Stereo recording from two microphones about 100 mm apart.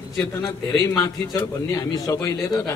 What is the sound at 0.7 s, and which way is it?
A man's voice, 35° left (ahead or behind).